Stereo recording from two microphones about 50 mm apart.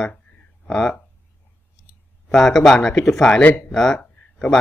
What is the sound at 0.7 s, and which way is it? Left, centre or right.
Speech, centre.